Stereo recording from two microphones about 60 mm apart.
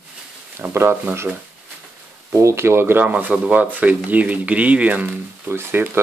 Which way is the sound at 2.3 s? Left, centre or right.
Right.